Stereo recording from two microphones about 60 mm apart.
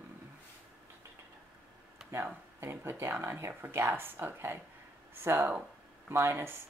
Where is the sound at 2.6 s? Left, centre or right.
Right.